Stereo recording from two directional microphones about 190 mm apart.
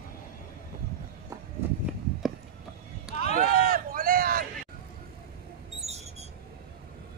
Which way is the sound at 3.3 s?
45° right (ahead or behind).